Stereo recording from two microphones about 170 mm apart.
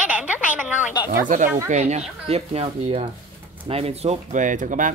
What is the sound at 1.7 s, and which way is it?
Speech, 40° right (ahead or behind).